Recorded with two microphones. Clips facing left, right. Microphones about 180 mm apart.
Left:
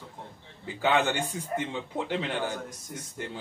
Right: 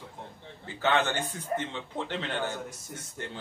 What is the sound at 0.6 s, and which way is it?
Speech, 10° left (ahead or behind).